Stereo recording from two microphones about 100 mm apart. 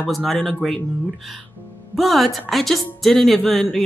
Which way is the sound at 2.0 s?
Centre (ahead or behind).